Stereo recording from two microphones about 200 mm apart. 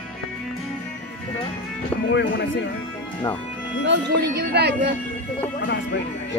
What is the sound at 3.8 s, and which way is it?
Speech, 60° right (ahead or behind).